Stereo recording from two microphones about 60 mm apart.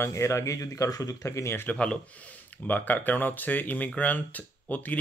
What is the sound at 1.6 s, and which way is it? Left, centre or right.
Speech, centre.